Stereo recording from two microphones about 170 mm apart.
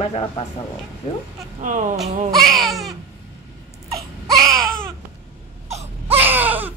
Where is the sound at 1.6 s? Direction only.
50° right (ahead or behind).